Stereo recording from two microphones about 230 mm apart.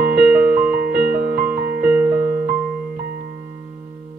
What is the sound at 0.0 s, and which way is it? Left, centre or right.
Music, right.